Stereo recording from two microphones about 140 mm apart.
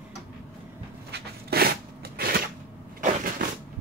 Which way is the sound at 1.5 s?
90° right.